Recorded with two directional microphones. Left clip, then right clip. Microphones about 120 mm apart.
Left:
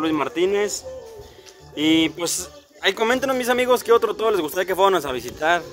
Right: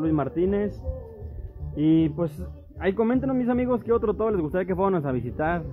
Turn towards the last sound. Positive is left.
turn(degrees=20)  # may be behind; listen again after turning